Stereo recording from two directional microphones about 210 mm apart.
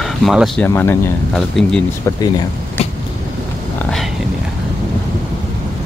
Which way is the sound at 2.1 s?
15° left (ahead or behind).